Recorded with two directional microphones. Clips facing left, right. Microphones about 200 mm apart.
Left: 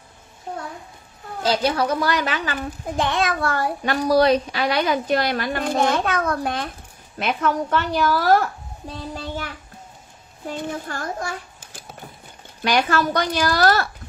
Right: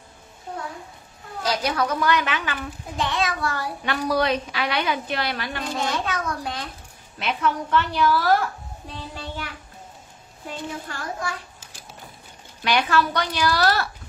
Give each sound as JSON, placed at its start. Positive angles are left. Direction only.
{"t": 1.4, "sound": "a woman's voice", "side_deg": 30}
{"t": 3.0, "sound": "a child's voice", "side_deg": 55}
{"t": 7.2, "sound": "a child's voice", "side_deg": 45}
{"t": 10.9, "sound": "a child's voice", "side_deg": 45}